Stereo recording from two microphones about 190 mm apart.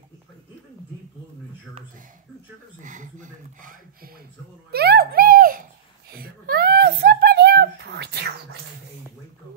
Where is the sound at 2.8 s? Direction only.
40° right (ahead or behind).